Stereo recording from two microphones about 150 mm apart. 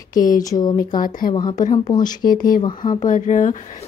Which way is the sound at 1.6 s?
55° left (ahead or behind).